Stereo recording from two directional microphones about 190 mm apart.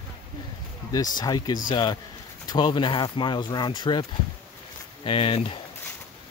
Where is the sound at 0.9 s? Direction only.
20° left (ahead or behind).